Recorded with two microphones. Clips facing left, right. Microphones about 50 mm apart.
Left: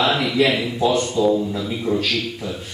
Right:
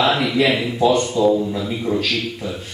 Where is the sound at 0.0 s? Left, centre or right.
Centre.